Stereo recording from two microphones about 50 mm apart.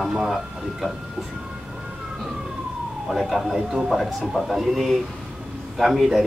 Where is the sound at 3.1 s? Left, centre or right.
Centre.